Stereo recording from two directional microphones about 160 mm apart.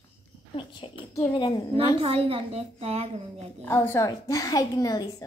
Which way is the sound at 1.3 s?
25° left (ahead or behind).